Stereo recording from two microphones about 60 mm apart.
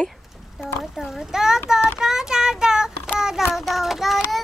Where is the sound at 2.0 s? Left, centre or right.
Centre.